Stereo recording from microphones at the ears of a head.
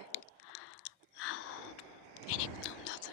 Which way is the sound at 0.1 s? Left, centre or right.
Left.